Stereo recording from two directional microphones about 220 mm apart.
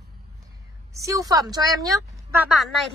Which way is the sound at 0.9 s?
15° right (ahead or behind).